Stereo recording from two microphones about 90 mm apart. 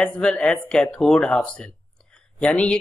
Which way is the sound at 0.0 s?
10° left (ahead or behind).